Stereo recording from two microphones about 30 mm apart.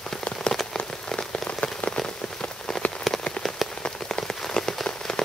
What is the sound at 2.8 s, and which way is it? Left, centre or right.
Rain on surface, left.